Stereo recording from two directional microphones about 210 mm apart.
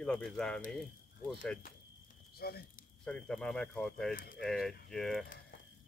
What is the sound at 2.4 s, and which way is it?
Speech, 50° left (ahead or behind).